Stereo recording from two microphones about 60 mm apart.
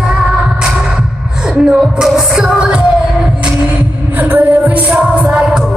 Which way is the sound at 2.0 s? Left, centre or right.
Centre.